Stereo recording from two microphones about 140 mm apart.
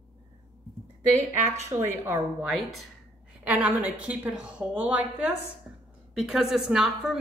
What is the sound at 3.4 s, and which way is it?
Speech, 10° right (ahead or behind).